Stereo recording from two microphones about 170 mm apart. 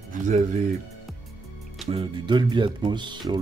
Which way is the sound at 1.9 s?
30° right (ahead or behind).